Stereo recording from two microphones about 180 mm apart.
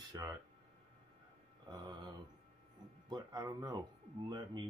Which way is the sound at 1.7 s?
25° right (ahead or behind).